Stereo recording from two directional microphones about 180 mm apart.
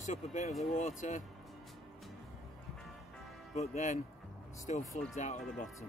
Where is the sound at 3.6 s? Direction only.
40° left (ahead or behind).